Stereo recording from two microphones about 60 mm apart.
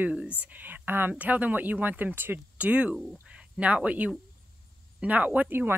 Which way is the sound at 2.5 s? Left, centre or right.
Right.